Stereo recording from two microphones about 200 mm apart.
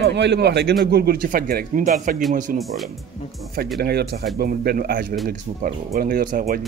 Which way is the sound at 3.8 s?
50° right (ahead or behind).